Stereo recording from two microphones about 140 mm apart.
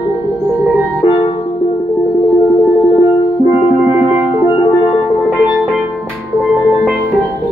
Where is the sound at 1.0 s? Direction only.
35° left (ahead or behind).